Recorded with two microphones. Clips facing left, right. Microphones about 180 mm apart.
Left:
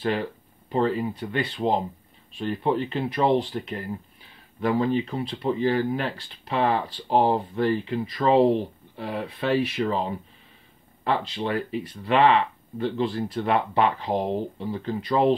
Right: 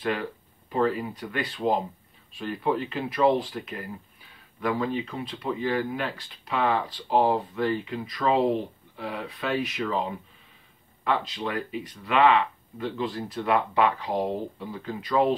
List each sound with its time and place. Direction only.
0.7 s speech: 30° left (ahead or behind)